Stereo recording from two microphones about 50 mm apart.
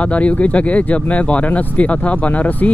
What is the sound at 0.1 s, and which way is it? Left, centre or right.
Speech, left.